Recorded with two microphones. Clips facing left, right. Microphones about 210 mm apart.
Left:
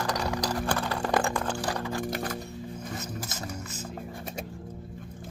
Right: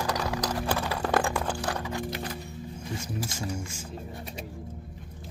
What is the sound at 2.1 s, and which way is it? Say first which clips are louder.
Music: left 3 dB; 50° left (ahead or behind).